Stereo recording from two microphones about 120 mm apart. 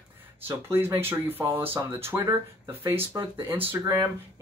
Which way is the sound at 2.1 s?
35° right (ahead or behind).